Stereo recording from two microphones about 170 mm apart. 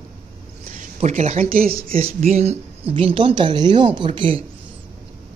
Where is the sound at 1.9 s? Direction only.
35° right (ahead or behind).